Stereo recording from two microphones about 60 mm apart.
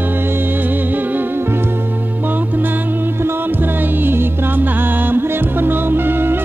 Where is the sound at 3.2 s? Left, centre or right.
Right.